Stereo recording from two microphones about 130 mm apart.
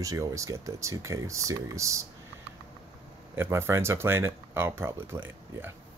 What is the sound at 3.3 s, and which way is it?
Speech, 15° right (ahead or behind).